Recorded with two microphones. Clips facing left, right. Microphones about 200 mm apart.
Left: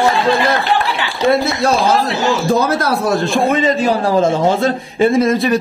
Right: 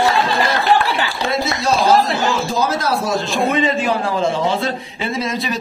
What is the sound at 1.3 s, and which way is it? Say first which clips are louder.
A man's voice: left 3 dB; 55° left (ahead or behind).